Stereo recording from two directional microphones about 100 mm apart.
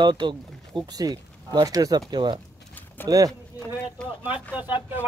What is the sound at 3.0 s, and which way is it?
Speech, 20° left (ahead or behind).